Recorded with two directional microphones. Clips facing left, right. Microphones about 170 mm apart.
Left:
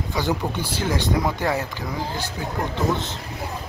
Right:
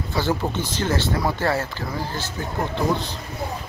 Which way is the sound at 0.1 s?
15° left (ahead or behind).